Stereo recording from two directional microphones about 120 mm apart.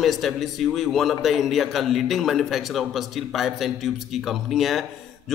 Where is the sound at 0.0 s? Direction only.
Centre (ahead or behind).